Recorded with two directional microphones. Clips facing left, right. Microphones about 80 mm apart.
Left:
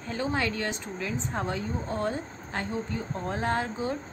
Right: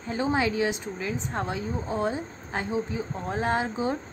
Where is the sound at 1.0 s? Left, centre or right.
Centre.